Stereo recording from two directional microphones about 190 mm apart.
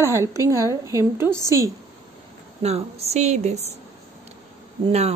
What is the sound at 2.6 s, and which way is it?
A woman's voice, 35° right (ahead or behind).